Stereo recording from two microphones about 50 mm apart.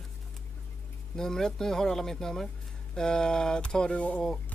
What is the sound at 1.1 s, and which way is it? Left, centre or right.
Speech, centre.